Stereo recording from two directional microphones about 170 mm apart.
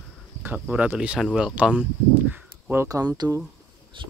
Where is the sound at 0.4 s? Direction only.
10° right (ahead or behind).